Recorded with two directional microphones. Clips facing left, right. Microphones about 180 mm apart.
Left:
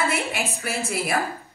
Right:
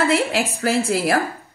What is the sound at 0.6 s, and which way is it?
Speech, 65° right (ahead or behind).